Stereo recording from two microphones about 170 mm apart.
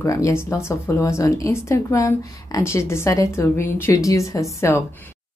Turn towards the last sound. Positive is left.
turn(degrees=15)  # may be behind; listen again after turning